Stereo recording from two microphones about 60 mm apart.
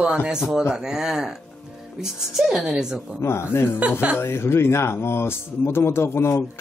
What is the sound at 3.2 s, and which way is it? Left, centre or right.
A man's voice, left.